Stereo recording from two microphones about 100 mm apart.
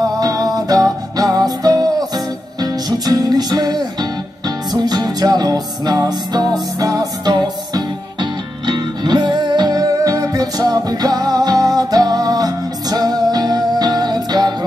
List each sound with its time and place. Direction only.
0.2 s music: 40° right (ahead or behind)